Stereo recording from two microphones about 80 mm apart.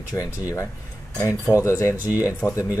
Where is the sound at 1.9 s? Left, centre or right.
Right.